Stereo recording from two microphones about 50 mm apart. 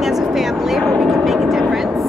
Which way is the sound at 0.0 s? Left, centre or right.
Centre.